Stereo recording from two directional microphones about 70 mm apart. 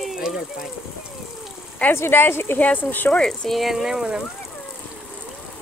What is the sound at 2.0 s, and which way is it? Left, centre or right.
Speech, left.